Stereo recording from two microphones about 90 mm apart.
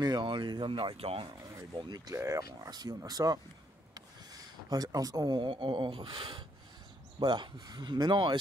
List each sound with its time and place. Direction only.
0.0 s speech: 55° right (ahead or behind); by 1.2 s 90° right
1.4 s speech: 40° right (ahead or behind)
1.7 s speech: 55° right (ahead or behind)
2.1 s speech: 35° right (ahead or behind)
2.7 s speech: 50° right (ahead or behind)